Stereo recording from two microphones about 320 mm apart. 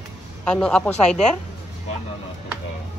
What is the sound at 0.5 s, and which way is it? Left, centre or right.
Speech, centre.